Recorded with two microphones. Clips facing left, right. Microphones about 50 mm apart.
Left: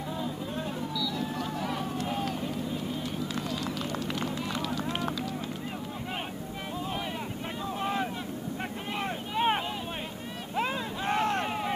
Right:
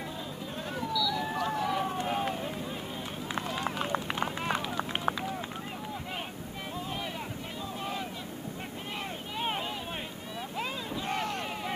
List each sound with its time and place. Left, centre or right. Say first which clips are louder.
1.1 s a sound: right 2 dB; right
1.8 s run: right 1 dB; right
7.8 s vehicle: left 7 dB; left
9.4 s vehicle: left 6 dB; left
11.4 s vehicle: left 4 dB; centre